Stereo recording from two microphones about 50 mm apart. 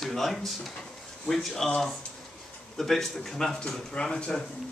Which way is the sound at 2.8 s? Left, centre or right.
Centre.